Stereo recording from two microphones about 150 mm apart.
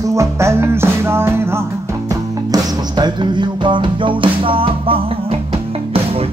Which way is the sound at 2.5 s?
30° right (ahead or behind).